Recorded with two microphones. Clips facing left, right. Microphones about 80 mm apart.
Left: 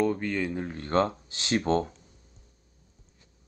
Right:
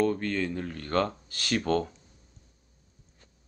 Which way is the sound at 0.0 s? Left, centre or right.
Centre.